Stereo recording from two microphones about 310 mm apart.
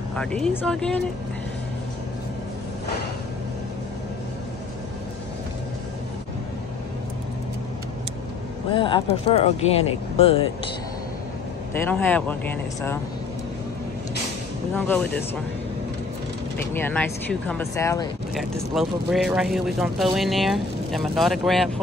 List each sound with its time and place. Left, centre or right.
0.1 s speech: centre
8.7 s speech: centre
11.7 s speech: centre
14.8 s speech: centre
16.5 s speech: centre